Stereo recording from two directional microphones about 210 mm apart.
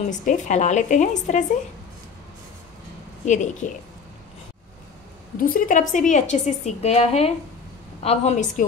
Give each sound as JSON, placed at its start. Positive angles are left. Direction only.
{"t": 0.1, "sound": "a woman's voice", "side_deg": 35}
{"t": 3.6, "sound": "a woman's voice", "side_deg": 35}
{"t": 5.4, "sound": "a woman's voice", "side_deg": 40}